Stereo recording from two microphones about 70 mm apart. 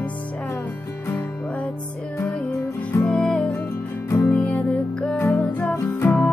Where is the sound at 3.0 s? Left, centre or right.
Centre.